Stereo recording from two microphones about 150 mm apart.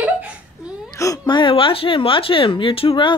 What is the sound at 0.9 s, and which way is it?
Speech, 20° left (ahead or behind).